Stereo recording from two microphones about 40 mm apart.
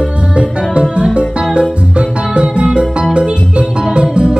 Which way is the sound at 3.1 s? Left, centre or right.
Right.